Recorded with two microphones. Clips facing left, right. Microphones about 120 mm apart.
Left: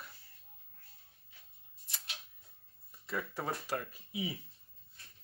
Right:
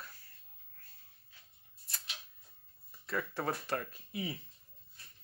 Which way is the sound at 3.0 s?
10° left (ahead or behind).